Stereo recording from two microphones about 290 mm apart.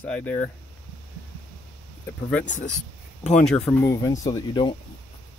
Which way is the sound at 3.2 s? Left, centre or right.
Left.